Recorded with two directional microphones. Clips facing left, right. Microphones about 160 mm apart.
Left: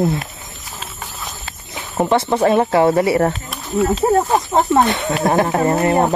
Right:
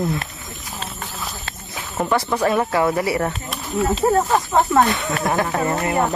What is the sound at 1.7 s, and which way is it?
Speech, 25° left (ahead or behind).